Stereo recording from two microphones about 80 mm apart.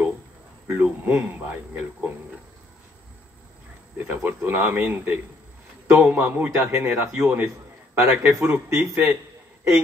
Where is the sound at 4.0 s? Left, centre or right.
Right.